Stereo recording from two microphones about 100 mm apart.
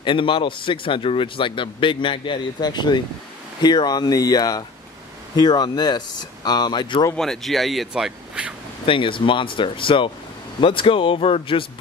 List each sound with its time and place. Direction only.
0.0 s speech: 55° left (ahead or behind)
7.2 s speech: centre (ahead or behind)
8.8 s speech: 60° left (ahead or behind)